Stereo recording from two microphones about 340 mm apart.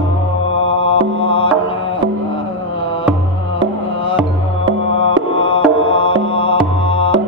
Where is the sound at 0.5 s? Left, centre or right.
Centre.